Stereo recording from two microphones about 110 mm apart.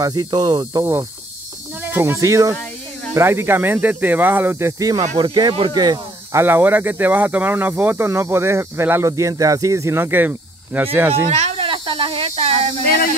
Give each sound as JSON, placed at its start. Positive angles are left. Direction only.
{"t": 0.0, "sound": "speech", "side_deg": -40}
{"t": 1.8, "sound": "speech", "side_deg": -20}
{"t": 5.2, "sound": "speech", "side_deg": -45}
{"t": 5.8, "sound": "speech", "side_deg": -35}
{"t": 6.4, "sound": "speech", "side_deg": -20}
{"t": 11.2, "sound": "snake", "side_deg": -80}